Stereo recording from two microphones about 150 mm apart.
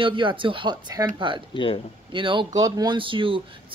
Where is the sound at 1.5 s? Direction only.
35° left (ahead or behind).